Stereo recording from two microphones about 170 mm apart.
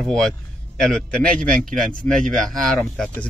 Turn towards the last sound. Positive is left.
turn(degrees=5)  # may be behind; listen again after turning